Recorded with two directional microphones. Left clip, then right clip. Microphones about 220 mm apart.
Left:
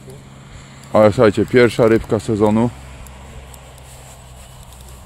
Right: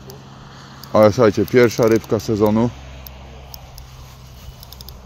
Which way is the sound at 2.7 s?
55° left (ahead or behind).